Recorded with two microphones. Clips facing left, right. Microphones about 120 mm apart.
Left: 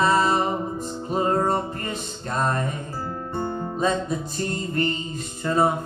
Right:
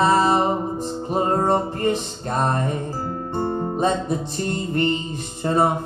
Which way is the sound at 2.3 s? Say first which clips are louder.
Right 2 dB; 30° right (ahead or behind).